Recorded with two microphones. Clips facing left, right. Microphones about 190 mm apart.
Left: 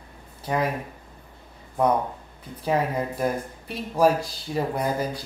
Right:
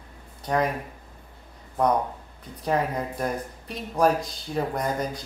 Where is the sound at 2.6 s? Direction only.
5° left (ahead or behind).